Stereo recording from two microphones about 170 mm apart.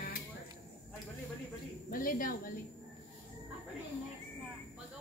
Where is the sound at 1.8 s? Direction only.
55° left (ahead or behind).